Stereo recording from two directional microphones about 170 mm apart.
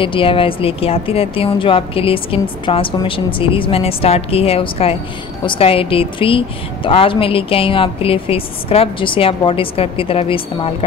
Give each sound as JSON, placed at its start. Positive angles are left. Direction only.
{"t": 0.0, "sound": "a woman's voice", "side_deg": 30}